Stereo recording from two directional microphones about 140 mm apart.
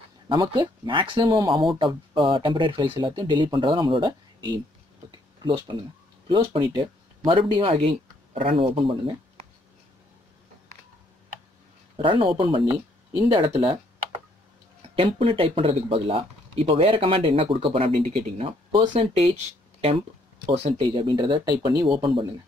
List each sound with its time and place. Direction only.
0.3 s speech: 35° right (ahead or behind)
12.0 s speech: 40° right (ahead or behind)
15.0 s speech: 40° right (ahead or behind)
20.4 s speech: 50° right (ahead or behind)
20.8 s speech: 35° right (ahead or behind)